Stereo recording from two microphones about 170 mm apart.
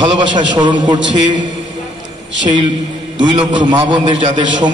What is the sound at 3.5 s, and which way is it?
A man's voice, 25° right (ahead or behind).